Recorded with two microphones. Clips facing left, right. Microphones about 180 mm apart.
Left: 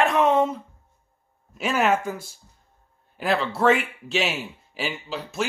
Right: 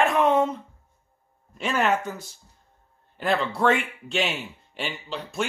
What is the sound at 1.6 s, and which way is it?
A man's voice, 10° left (ahead or behind).